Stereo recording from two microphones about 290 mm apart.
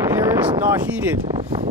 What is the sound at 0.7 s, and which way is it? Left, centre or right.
Speech, centre.